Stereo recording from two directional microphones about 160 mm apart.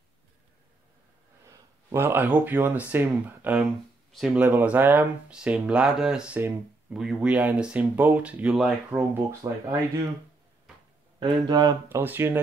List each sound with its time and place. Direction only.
1.4 s speech: 15° right (ahead or behind)
9.4 s speech: 25° right (ahead or behind)
11.1 s speech: 25° right (ahead or behind)
12.0 s speech: 15° right (ahead or behind)